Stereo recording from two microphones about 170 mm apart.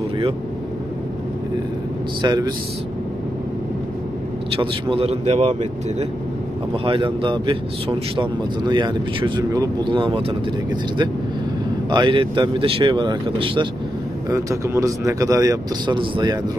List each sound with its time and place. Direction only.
2.2 s speech: 25° right (ahead or behind)
4.6 s speech: 30° right (ahead or behind)
11.9 s speech: 30° right (ahead or behind)